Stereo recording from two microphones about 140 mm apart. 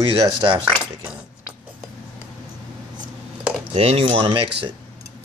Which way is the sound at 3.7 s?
45° right (ahead or behind).